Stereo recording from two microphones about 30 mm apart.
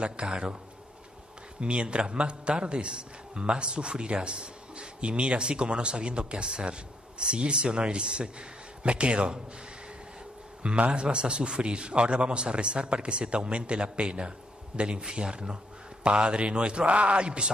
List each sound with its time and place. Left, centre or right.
0.2 s a man's voice: right
1.6 s a man's voice: right
10.6 s a man's voice: right